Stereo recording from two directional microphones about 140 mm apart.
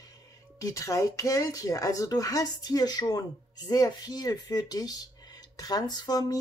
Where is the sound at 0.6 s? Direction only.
25° left (ahead or behind).